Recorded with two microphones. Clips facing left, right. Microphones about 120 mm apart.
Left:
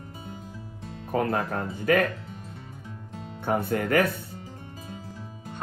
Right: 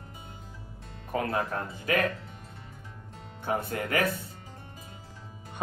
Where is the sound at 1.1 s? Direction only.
45° left (ahead or behind).